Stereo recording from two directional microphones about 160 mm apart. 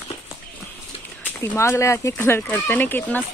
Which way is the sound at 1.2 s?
15° left (ahead or behind).